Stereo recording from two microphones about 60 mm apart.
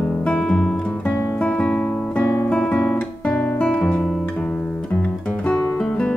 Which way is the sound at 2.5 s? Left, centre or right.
Centre.